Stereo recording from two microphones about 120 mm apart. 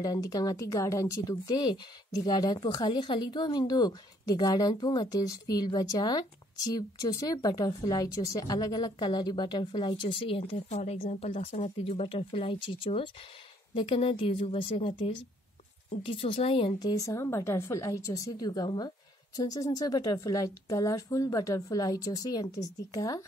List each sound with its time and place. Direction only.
0.0 s speech: 30° left (ahead or behind); by 10.8 s 50° left (ahead or behind)
10.8 s speech: 65° left (ahead or behind); by 16.7 s 50° left (ahead or behind)
16.8 s speech: 25° left (ahead or behind)